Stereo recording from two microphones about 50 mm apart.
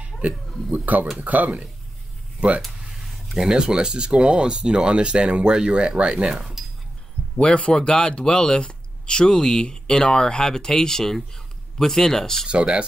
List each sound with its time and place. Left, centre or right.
0.2 s speech: right
3.3 s speech: centre
6.3 s speech: centre
7.3 s speech: left
12.4 s speech: right